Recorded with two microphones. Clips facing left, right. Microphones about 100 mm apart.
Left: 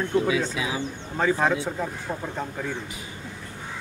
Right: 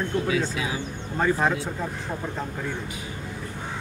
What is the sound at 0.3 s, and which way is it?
Speech, 20° left (ahead or behind).